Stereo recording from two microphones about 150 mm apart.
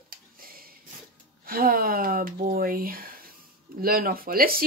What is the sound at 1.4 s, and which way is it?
Speech, 75° right (ahead or behind).